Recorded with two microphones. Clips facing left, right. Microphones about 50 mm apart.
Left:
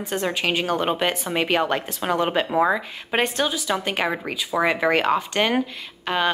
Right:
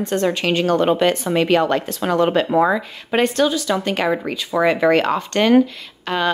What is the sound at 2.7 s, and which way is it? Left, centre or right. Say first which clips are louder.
A woman's voice: right 4 dB; centre.